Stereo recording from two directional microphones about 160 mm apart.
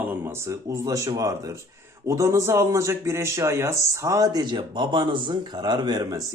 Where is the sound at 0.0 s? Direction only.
15° right (ahead or behind).